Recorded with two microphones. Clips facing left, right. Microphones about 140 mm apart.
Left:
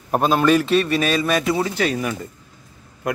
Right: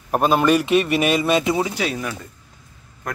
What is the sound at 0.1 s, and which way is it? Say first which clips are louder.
A man's voice: even; 5° right (ahead or behind).